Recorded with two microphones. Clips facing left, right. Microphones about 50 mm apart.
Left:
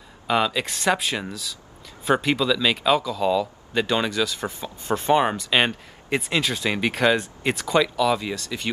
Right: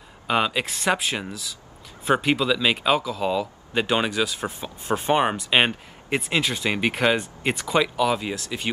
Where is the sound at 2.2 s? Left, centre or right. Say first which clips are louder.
Even; centre.